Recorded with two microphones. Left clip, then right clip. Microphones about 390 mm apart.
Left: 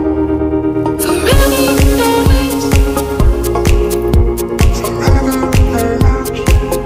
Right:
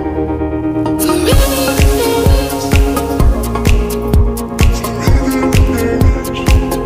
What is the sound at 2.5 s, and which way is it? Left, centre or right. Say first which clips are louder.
Music: left 1 dB; centre.